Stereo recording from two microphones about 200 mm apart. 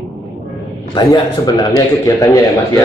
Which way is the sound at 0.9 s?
20° left (ahead or behind).